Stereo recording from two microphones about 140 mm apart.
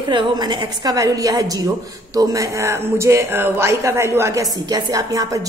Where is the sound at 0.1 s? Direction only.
35° right (ahead or behind).